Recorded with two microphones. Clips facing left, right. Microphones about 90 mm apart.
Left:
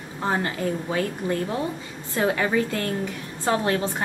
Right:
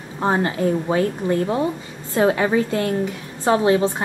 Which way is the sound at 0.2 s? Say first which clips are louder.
Right 6 dB; 25° right (ahead or behind).